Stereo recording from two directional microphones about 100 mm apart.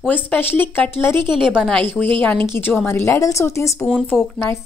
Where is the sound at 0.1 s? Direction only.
20° left (ahead or behind).